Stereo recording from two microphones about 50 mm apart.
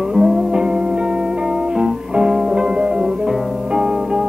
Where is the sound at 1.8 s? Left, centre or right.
Centre.